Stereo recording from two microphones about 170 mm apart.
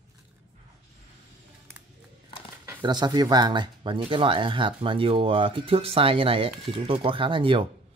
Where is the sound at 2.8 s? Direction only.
25° right (ahead or behind).